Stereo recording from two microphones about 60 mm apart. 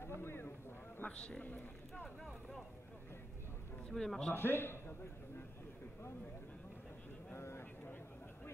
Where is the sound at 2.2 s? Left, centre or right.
Centre.